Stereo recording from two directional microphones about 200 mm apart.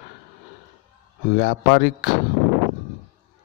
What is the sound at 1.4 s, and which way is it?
Speech, 55° left (ahead or behind).